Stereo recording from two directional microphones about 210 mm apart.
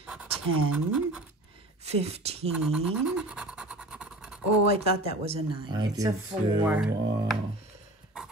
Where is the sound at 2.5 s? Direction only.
Centre (ahead or behind).